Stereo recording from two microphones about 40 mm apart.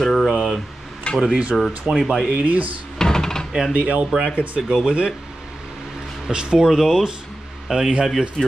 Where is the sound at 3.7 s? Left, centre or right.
Right.